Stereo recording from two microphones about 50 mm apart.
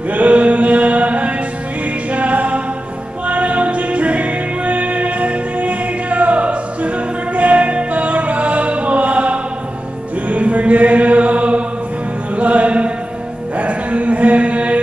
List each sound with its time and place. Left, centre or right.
0.1 s mantra: right
2.0 s music: right
10.2 s mantra: right
13.6 s a sound: right